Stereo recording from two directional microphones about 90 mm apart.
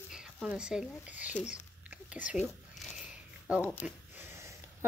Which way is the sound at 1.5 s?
15° right (ahead or behind).